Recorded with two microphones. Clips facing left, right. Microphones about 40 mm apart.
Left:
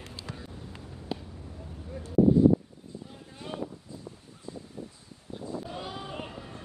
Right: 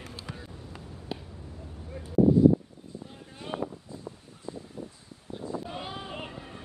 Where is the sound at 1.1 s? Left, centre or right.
Centre.